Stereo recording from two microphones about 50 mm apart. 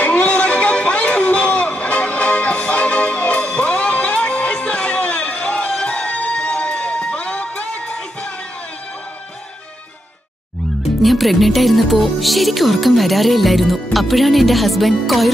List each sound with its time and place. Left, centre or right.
0.0 s music: left
11.0 s speech: centre